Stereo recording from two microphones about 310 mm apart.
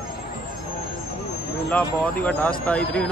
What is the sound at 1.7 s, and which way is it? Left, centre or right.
Speech, centre.